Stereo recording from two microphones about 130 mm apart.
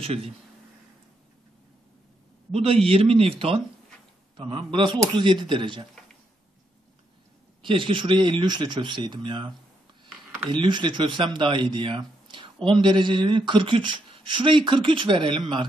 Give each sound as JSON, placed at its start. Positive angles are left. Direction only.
{"t": 0.0, "sound": "a man's voice", "side_deg": -50}
{"t": 2.5, "sound": "a man's voice", "side_deg": -45}
{"t": 7.6, "sound": "speech", "side_deg": -40}
{"t": 10.0, "sound": "a sound", "side_deg": -5}
{"t": 10.5, "sound": "speech", "side_deg": -35}